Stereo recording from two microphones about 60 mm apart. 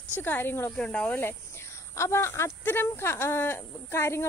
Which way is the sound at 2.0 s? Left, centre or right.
Left.